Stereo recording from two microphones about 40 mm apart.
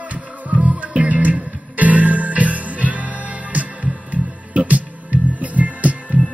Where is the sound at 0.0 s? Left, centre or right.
Right.